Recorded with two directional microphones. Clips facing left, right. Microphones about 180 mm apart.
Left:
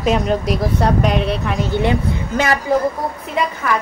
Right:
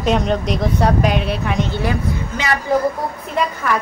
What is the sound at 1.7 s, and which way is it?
Speech, 25° left (ahead or behind).